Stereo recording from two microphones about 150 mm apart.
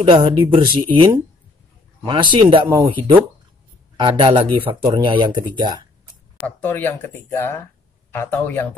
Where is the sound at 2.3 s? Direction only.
35° right (ahead or behind).